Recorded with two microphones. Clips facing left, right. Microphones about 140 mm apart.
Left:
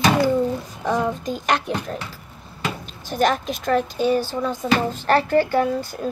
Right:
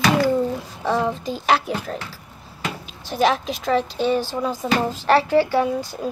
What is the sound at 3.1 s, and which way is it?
Speech, centre (ahead or behind).